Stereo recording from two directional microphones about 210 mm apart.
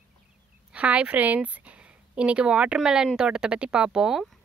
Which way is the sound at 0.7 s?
5° right (ahead or behind).